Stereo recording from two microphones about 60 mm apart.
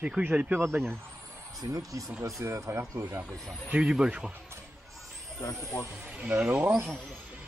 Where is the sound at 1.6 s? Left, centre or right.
Right.